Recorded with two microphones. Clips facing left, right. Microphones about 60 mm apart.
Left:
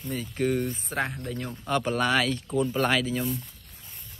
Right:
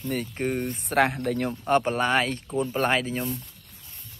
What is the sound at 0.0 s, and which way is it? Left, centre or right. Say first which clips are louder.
Speech: right 4 dB; right.